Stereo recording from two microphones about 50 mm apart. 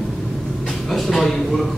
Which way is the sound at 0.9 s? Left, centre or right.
Centre.